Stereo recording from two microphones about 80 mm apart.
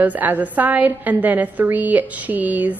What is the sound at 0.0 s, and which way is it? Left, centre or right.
A woman's voice, right.